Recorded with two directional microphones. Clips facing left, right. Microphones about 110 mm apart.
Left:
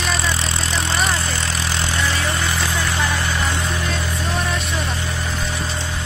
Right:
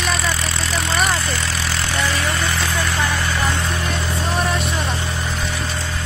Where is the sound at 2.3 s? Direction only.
15° left (ahead or behind).